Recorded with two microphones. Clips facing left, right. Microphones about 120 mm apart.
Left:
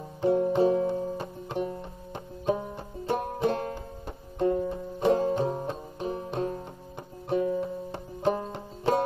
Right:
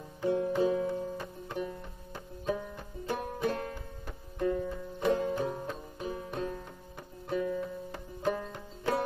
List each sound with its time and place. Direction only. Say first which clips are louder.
0.2 s banjo: left 5 dB; 30° left (ahead or behind)
7.2 s music: left 5 dB; 30° left (ahead or behind)